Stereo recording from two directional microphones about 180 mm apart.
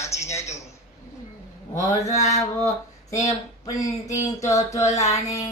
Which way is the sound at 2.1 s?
40° left (ahead or behind).